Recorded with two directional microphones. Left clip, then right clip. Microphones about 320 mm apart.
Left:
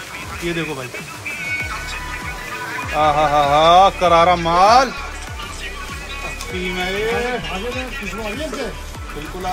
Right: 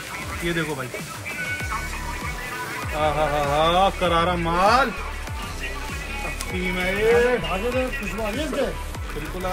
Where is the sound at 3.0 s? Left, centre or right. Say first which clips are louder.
Left 8 dB; left.